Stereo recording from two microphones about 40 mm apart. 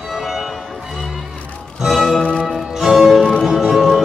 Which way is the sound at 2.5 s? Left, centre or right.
Centre.